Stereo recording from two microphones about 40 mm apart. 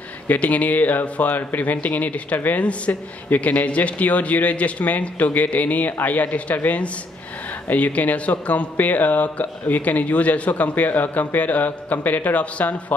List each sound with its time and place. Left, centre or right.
0.3 s speech: left
2.9 s a man's voice: left
3.3 s speech: left